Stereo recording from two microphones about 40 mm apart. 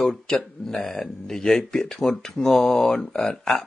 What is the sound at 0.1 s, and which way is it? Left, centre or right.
Speech, centre.